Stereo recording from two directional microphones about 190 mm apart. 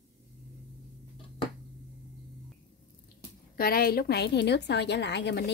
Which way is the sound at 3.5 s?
50° left (ahead or behind).